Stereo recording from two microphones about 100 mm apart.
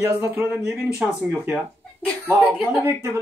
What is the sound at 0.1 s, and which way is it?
Speech, 20° right (ahead or behind).